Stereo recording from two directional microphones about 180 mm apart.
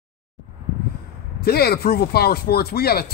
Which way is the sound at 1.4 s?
60° left (ahead or behind).